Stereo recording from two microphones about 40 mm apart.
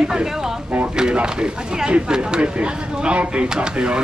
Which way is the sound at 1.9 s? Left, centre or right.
Right.